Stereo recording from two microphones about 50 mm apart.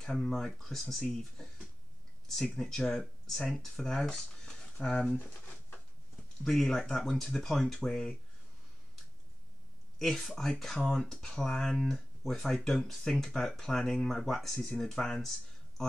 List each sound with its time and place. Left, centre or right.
0.1 s speech: centre
5.1 s pigeon: left
6.4 s speech: centre
9.9 s speech: centre